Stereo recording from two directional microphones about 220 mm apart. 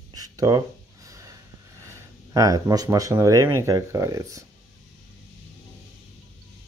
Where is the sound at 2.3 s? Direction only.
15° right (ahead or behind).